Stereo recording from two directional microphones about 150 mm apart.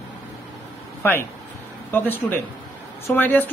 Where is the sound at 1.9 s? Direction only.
15° left (ahead or behind).